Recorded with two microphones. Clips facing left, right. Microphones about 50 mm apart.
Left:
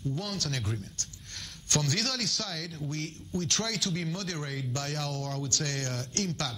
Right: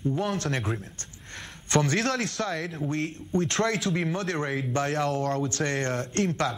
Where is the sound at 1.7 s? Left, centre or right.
Right.